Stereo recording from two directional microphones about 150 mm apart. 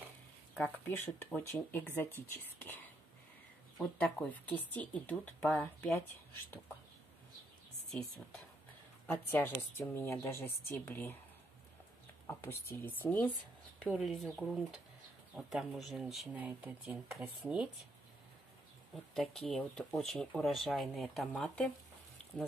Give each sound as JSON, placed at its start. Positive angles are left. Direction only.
{"t": 0.6, "sound": "speech", "side_deg": 10}
{"t": 4.0, "sound": "speech", "side_deg": 10}
{"t": 9.0, "sound": "speech", "side_deg": 15}
{"t": 12.3, "sound": "speech", "side_deg": 15}
{"t": 13.8, "sound": "speech", "side_deg": 0}
{"t": 19.1, "sound": "speech", "side_deg": 0}